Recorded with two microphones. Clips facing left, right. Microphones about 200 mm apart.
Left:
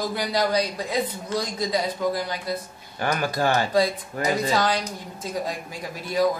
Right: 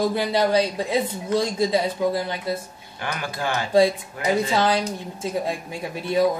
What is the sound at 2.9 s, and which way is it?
Speech, 40° left (ahead or behind).